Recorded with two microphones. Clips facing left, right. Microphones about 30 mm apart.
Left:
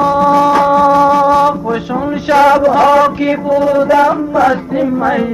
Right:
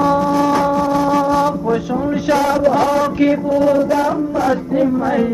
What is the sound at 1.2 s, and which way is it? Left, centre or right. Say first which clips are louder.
Music: left 5 dB; left.